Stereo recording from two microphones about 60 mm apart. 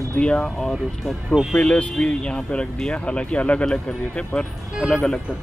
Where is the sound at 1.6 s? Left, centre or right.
Left.